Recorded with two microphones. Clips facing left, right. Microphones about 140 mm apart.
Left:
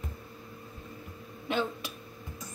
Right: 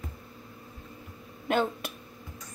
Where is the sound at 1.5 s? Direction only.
55° right (ahead or behind).